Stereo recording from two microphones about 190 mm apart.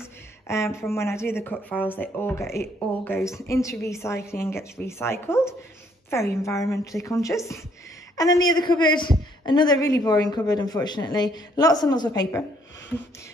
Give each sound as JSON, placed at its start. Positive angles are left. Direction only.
{"t": 0.0, "sound": "speech", "side_deg": 15}